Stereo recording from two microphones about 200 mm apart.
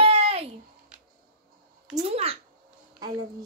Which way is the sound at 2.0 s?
30° right (ahead or behind).